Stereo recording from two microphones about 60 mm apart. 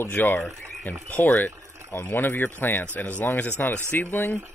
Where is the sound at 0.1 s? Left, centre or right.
Left.